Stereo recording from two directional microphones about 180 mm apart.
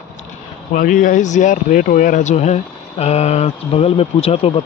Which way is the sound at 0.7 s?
50° left (ahead or behind).